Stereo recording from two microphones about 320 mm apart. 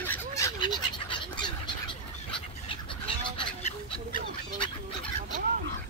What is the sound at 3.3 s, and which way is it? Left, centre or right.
Goose, centre.